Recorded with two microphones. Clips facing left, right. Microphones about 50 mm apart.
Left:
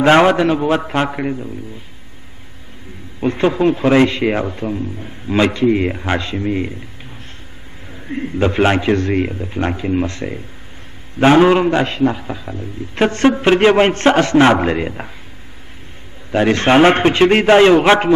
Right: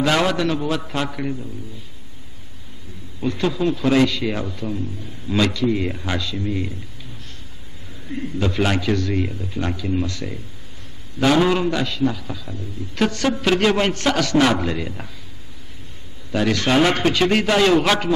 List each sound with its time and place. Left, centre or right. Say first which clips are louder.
0.0 s a man's voice: left 8 dB; left
3.2 s a man's voice: left 6 dB; left
7.9 s a man's voice: left 5 dB; left
16.3 s a man's voice: left 6 dB; left